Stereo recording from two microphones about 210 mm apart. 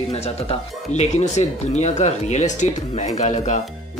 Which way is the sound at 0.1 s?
30° left (ahead or behind).